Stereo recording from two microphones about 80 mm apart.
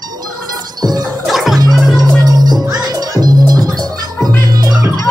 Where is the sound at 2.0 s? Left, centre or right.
Right.